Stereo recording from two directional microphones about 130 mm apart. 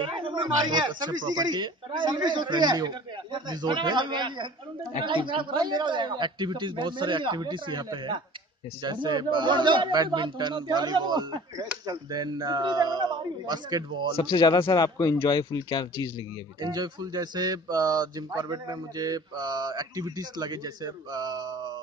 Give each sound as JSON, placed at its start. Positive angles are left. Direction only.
{"t": 0.0, "sound": "speech", "side_deg": -40}
{"t": 14.1, "sound": "speech", "side_deg": 35}
{"t": 16.6, "sound": "speech", "side_deg": -30}